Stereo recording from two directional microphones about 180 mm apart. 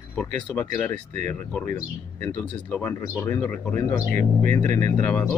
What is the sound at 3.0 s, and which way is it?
Speech, 15° left (ahead or behind).